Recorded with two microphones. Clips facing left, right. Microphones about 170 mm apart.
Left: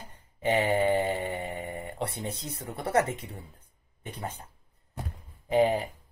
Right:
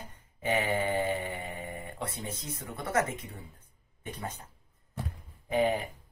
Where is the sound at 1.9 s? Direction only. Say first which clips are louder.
Left 5 dB; 70° left (ahead or behind).